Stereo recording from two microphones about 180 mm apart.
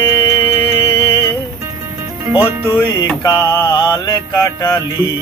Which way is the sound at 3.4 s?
20° left (ahead or behind).